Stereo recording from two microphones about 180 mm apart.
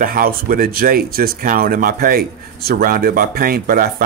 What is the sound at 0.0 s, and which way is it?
Speech, 50° right (ahead or behind).